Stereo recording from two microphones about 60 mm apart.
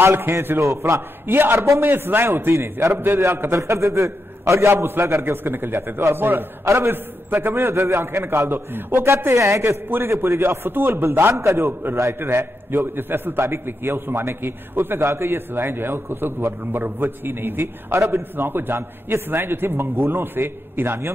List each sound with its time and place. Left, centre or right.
0.0 s a man's voice: right
0.6 s a man's voice: right
1.2 s a man's voice: right
2.9 s a man's voice: right
7.5 s a man's voice: right
12.1 s a man's voice: right